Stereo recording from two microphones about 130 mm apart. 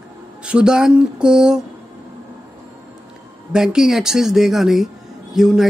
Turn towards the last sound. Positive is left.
turn(degrees=-5)  # may be behind; listen again after turning